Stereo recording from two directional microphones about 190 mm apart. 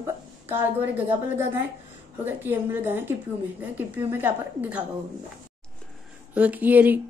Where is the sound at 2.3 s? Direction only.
10° right (ahead or behind).